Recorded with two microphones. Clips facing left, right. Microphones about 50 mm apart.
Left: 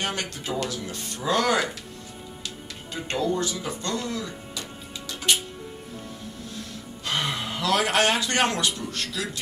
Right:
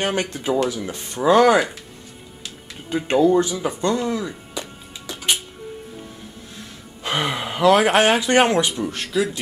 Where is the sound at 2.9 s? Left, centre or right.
Right.